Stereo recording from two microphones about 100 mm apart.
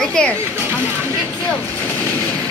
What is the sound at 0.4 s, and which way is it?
Speech, 25° right (ahead or behind).